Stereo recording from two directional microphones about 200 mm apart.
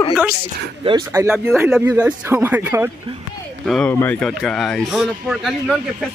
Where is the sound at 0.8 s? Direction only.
15° right (ahead or behind).